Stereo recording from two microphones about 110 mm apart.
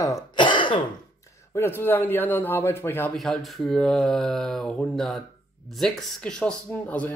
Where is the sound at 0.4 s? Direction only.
45° left (ahead or behind).